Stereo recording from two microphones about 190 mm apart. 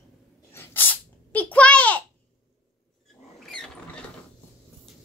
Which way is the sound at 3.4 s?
Centre (ahead or behind).